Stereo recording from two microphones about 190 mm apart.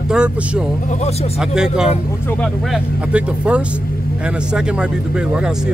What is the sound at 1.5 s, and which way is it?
Speech, 5° right (ahead or behind).